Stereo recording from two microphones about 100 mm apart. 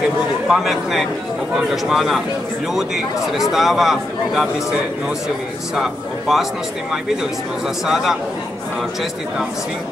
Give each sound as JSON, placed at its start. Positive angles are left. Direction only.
{"t": 0.5, "sound": "speech", "side_deg": 0}
{"t": 3.3, "sound": "speech", "side_deg": 0}
{"t": 5.8, "sound": "speech", "side_deg": -5}
{"t": 7.8, "sound": "speech", "side_deg": -5}